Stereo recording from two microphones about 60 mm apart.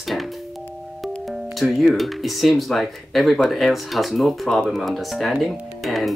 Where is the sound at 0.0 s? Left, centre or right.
Centre.